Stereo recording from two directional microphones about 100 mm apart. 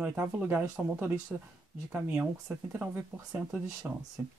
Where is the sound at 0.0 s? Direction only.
15° right (ahead or behind).